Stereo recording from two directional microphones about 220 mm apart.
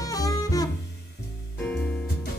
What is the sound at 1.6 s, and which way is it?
Music, 5° left (ahead or behind).